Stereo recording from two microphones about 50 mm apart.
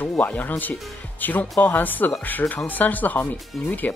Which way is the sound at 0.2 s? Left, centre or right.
Left.